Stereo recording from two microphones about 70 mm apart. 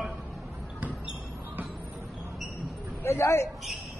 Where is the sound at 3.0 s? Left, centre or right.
Left.